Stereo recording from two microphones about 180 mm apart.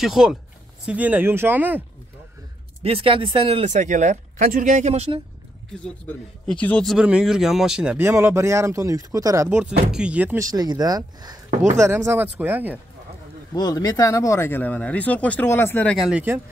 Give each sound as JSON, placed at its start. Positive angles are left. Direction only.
{"t": 0.0, "sound": "speech", "side_deg": -5}
{"t": 2.8, "sound": "speech", "side_deg": -30}
{"t": 6.6, "sound": "speech", "side_deg": 5}
{"t": 9.9, "sound": "speech", "side_deg": -5}
{"t": 13.6, "sound": "speech", "side_deg": 20}
{"t": 16.1, "sound": "speech", "side_deg": -10}